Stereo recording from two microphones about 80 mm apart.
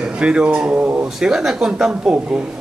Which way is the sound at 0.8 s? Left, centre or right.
Right.